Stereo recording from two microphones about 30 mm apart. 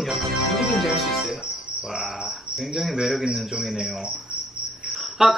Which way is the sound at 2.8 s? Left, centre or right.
Centre.